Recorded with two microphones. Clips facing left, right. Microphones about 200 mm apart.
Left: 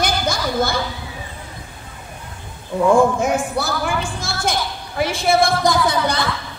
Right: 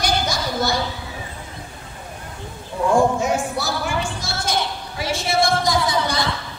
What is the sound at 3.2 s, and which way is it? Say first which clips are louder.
Speech: left 2 dB; 55° left (ahead or behind).